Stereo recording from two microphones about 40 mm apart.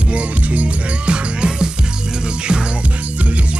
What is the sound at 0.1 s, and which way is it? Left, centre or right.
Music, right.